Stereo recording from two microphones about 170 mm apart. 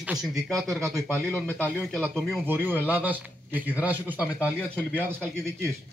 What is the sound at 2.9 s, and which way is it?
Speech, 10° right (ahead or behind).